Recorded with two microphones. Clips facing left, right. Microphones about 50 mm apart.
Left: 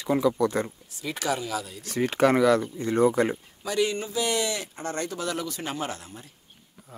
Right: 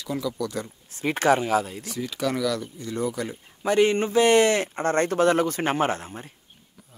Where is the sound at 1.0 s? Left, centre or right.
Right.